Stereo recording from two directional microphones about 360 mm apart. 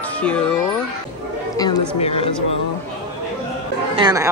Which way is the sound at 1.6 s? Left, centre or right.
Centre.